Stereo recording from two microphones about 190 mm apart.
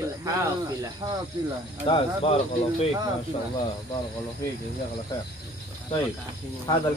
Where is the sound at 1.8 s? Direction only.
30° left (ahead or behind).